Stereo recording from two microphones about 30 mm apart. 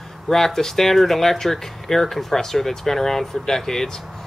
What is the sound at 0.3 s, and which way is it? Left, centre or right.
Speech, centre.